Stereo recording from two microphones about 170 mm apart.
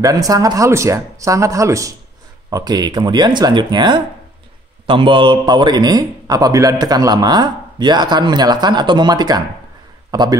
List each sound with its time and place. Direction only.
0.0 s a man's voice: 20° right (ahead or behind)